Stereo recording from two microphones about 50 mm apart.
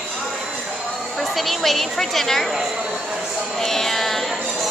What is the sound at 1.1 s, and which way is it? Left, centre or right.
A woman's voice, centre.